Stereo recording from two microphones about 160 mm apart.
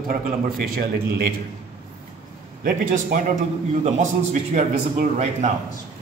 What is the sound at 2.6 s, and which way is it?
A man's voice, 55° right (ahead or behind).